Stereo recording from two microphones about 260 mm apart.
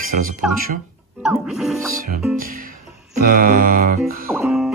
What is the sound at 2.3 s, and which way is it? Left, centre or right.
Speech, right.